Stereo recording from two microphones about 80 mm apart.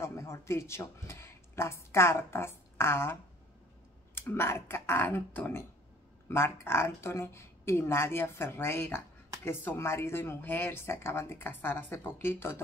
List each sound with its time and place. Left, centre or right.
0.0 s speech: left